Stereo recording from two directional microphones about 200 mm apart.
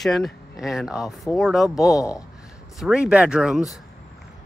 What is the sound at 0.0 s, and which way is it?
Speech, centre (ahead or behind).